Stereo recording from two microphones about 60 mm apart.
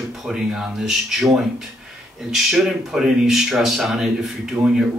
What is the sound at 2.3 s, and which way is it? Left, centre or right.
Speech, centre.